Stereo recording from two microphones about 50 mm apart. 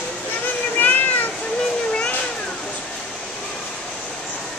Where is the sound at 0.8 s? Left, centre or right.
Left.